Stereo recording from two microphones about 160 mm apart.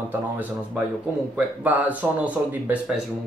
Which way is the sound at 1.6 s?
10° right (ahead or behind).